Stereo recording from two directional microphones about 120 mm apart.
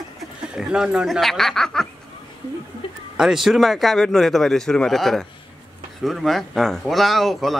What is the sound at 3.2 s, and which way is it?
A man's voice, 5° right (ahead or behind).